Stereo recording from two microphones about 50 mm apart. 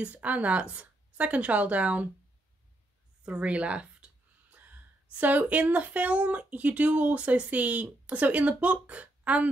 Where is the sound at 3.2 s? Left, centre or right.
Right.